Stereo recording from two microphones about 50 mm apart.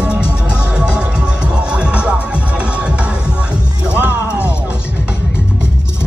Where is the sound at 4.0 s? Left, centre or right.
Right.